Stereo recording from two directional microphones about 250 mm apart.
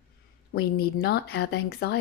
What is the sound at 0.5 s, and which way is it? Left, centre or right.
Speech, left.